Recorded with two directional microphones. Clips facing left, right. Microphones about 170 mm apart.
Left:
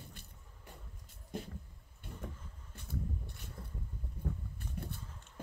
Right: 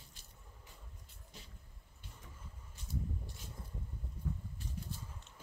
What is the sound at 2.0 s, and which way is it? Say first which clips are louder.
Vehicle: left 9 dB; 55° left (ahead or behind).